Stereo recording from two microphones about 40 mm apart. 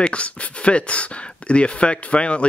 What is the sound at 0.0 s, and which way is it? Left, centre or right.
Speech, left.